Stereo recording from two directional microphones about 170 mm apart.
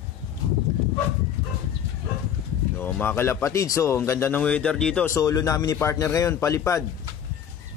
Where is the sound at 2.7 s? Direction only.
10° left (ahead or behind).